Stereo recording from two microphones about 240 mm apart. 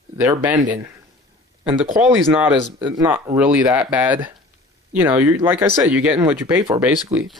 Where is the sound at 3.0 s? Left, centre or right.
Centre.